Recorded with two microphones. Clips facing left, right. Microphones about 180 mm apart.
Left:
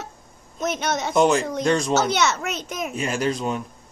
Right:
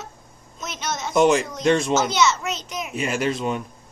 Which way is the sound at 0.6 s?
55° left (ahead or behind).